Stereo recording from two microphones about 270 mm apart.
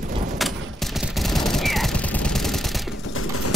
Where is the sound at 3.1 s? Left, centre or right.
Left.